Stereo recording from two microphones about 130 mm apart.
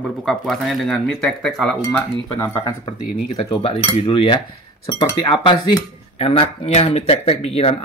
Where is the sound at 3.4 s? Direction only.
45° left (ahead or behind).